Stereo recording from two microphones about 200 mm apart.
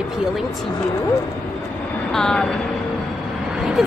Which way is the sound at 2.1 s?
5° left (ahead or behind).